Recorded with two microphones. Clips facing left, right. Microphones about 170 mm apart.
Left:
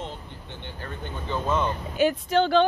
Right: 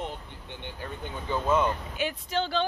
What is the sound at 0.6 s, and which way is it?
Speech, 10° right (ahead or behind).